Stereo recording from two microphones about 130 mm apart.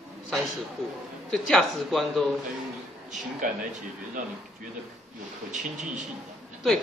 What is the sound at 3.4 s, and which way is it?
Speech, 90° right.